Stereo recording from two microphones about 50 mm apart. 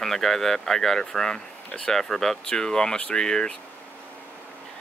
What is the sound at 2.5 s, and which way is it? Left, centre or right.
Speech, centre.